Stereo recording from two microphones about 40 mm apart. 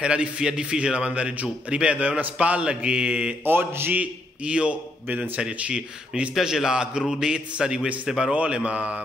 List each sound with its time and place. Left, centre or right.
0.0 s a man's voice: right
3.4 s speech: right
4.5 s a man's voice: right
5.0 s a man's voice: right
5.4 s speech: right
6.4 s a man's voice: centre; by 9.0 s right